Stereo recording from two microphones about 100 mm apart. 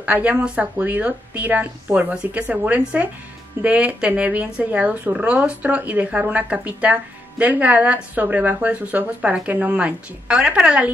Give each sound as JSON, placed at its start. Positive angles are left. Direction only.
{"t": 0.0, "sound": "a woman's voice", "side_deg": -15}